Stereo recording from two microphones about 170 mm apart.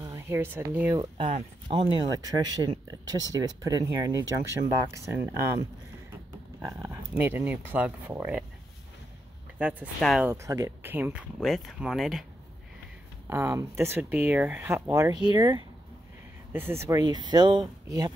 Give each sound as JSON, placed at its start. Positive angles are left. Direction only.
{"t": 0.0, "sound": "speech", "side_deg": -15}
{"t": 0.9, "sound": "speech", "side_deg": -30}
{"t": 6.6, "sound": "speech", "side_deg": -15}
{"t": 9.6, "sound": "speech", "side_deg": -10}
{"t": 10.2, "sound": "speech", "side_deg": -15}
{"t": 13.3, "sound": "speech", "side_deg": -15}
{"t": 16.5, "sound": "speech", "side_deg": -15}